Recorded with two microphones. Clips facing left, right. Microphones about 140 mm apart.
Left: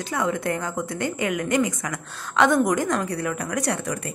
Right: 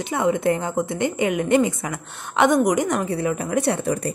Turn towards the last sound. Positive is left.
turn(degrees=-25)  # may be behind; listen again after turning